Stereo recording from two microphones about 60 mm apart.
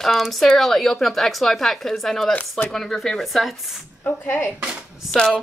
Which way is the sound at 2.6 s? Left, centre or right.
Centre.